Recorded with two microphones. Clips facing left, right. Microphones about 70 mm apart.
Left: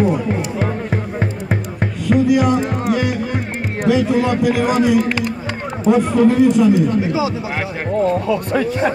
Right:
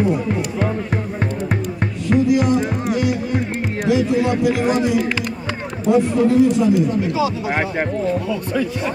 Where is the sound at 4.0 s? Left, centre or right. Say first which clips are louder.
Left 1 dB; left.